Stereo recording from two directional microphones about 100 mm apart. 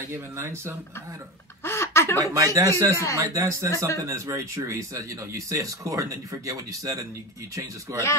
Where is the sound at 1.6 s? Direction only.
25° left (ahead or behind).